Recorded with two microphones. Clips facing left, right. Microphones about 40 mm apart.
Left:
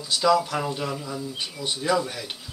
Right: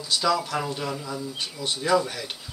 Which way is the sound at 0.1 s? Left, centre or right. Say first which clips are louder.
Left 3 dB; centre.